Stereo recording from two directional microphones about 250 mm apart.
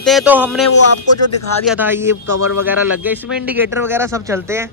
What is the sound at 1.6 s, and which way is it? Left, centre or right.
Speech, centre.